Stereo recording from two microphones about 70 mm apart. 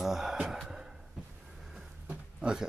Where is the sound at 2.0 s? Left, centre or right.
Centre.